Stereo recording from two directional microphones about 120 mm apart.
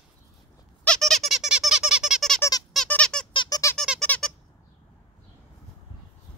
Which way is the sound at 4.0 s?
5° left (ahead or behind).